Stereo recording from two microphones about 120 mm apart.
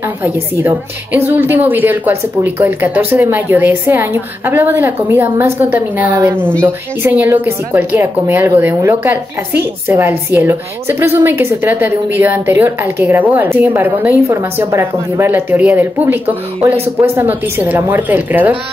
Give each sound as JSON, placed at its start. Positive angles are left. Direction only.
{"t": 0.2, "sound": "a woman's voice", "side_deg": -15}